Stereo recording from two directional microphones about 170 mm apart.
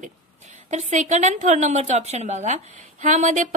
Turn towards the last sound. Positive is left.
turn(degrees=-50)  # may be behind; listen again after turning